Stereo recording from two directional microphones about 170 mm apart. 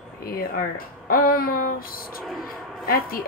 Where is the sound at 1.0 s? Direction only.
60° left (ahead or behind).